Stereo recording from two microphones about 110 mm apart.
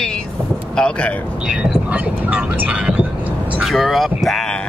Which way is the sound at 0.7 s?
10° left (ahead or behind).